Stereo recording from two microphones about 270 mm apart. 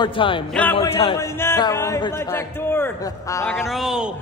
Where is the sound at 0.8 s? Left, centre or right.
Centre.